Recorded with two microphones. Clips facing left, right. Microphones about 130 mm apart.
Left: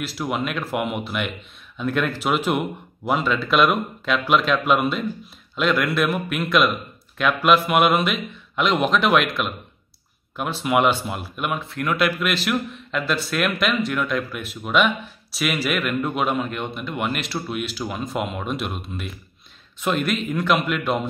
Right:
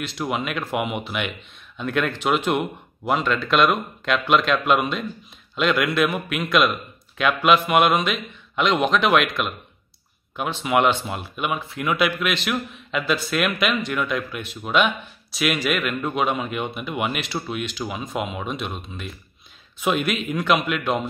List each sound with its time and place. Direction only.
0.0 s speech: 5° left (ahead or behind)